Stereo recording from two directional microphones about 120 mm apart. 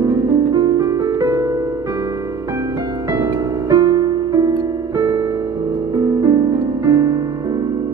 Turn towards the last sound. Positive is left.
turn(degrees=-30)  # may be behind; listen again after turning